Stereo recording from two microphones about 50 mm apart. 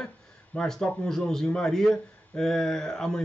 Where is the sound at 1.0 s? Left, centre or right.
Centre.